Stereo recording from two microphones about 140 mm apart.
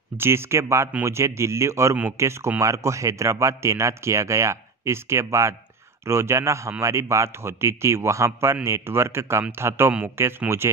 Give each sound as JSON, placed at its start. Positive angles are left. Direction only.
{"t": 0.2, "sound": "speech", "side_deg": -15}